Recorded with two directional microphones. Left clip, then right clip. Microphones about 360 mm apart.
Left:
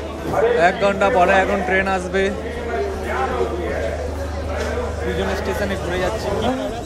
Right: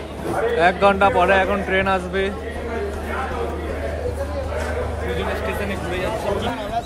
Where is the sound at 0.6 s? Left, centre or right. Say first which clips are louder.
Right 1 dB; centre.